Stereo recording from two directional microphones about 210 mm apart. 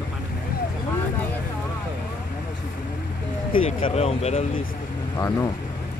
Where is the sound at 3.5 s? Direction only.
25° left (ahead or behind).